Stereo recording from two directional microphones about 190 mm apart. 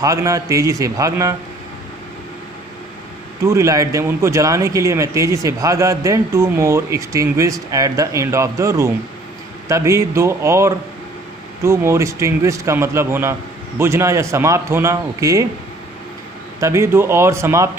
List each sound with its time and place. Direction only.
0.0 s a man's voice: 15° right (ahead or behind)
3.4 s a man's voice: 15° right (ahead or behind)
16.5 s a man's voice: 15° right (ahead or behind)